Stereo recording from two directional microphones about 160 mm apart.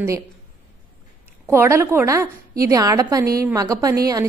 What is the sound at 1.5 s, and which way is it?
A woman's voice, 15° right (ahead or behind).